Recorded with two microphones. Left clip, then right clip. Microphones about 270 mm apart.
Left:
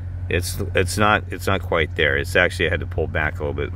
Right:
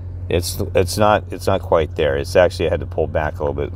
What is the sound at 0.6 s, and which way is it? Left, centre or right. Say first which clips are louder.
Speech: right 3 dB; centre.